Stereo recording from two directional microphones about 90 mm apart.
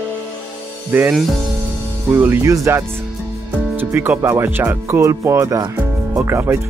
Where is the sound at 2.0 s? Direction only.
20° right (ahead or behind).